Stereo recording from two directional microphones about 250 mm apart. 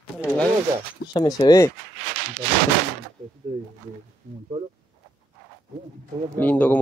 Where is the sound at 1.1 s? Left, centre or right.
Centre.